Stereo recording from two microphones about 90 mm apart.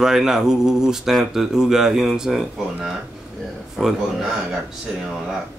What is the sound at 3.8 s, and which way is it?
Speech, 5° left (ahead or behind).